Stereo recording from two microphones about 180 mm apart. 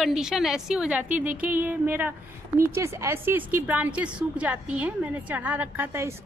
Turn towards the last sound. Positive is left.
turn(degrees=-10)  # may be behind; listen again after turning